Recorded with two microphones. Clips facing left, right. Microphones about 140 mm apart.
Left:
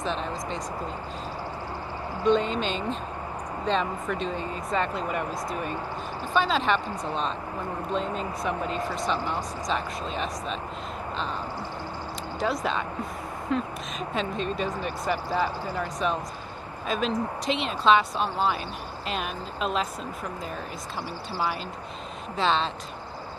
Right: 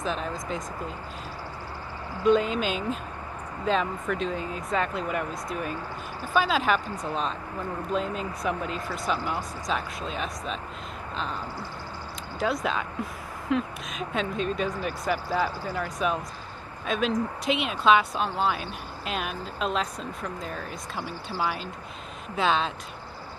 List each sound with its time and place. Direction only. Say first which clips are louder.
0.0 s speech: left 1 dB; 5° right (ahead or behind)
2.2 s speech: right 1 dB; 5° right (ahead or behind)
12.4 s speech: even; centre (ahead or behind)
22.3 s speech: even; 5° right (ahead or behind)